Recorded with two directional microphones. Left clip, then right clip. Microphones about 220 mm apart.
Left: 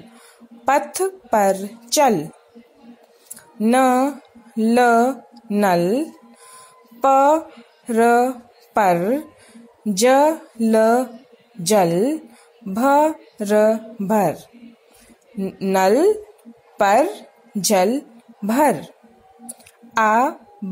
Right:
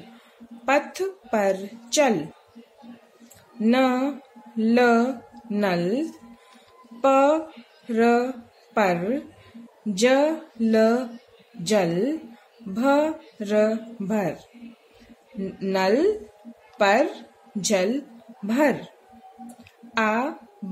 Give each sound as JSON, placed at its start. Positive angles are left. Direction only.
{"t": 0.7, "sound": "speech", "side_deg": 25}
{"t": 3.6, "sound": "speech", "side_deg": 25}
{"t": 15.4, "sound": "a woman's voice", "side_deg": 25}
{"t": 19.9, "sound": "speech", "side_deg": 30}